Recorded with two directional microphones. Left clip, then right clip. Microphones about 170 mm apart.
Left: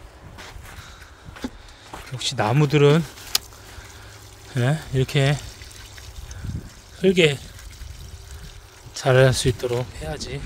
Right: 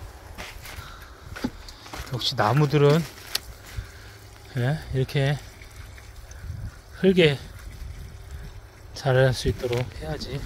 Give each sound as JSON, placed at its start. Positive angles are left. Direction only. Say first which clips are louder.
{"t": 2.1, "sound": "speech", "louder": "even", "side_deg": 20}
{"t": 2.5, "sound": "speech", "louder": "left 6 dB", "side_deg": 30}
{"t": 4.6, "sound": "speech", "louder": "left 4 dB", "side_deg": 30}
{"t": 7.0, "sound": "speech", "louder": "left 2 dB", "side_deg": 30}
{"t": 8.9, "sound": "speech", "louder": "left 5 dB", "side_deg": 35}